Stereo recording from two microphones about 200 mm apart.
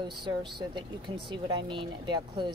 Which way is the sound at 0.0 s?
25° right (ahead or behind).